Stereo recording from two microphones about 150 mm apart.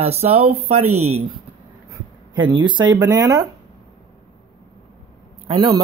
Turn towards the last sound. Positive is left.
turn(degrees=-35)  # may be behind; listen again after turning